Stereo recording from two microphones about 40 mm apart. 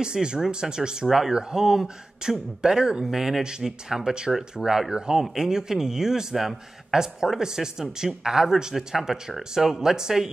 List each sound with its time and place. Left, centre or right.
0.0 s speech: right
1.0 s a man's voice: centre
4.3 s speech: centre
4.6 s a man's voice: centre